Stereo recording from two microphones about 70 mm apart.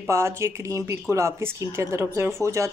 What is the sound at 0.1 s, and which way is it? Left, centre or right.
Speech, right.